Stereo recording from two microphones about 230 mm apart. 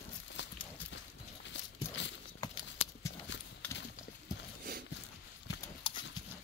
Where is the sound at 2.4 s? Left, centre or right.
Centre.